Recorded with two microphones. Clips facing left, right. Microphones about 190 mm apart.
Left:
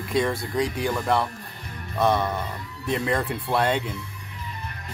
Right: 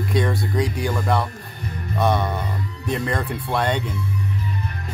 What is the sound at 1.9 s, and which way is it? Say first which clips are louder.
Music: right 1 dB; centre (ahead or behind).